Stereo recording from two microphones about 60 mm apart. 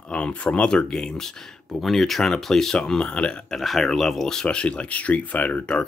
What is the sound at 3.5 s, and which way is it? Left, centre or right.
Speech, centre.